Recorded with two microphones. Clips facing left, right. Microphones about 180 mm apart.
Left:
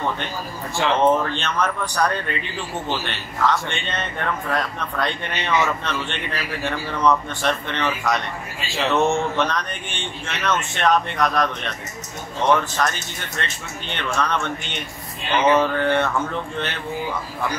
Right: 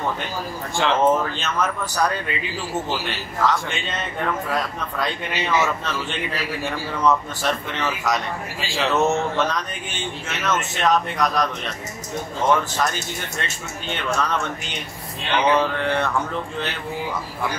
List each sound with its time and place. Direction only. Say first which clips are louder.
0.7 s a man's voice: left 1 dB; centre (ahead or behind)
13.9 s a man's voice: even; 5° right (ahead or behind)